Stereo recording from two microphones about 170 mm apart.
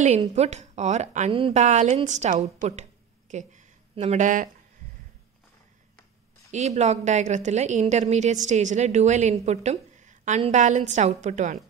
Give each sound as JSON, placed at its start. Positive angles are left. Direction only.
{"t": 0.0, "sound": "a woman's voice", "side_deg": -40}
{"t": 6.5, "sound": "a woman's voice", "side_deg": -40}